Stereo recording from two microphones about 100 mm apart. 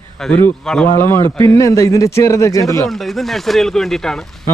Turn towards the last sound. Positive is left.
turn(degrees=5)  # may be behind; listen again after turning